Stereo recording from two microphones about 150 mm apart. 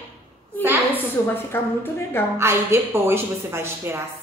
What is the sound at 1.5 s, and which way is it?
Speech, 15° left (ahead or behind).